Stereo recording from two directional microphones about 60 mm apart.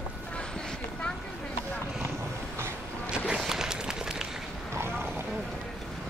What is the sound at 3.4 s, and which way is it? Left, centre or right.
Run, centre.